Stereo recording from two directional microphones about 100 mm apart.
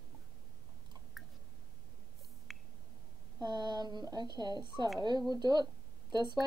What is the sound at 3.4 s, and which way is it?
A woman's voice, 45° right (ahead or behind).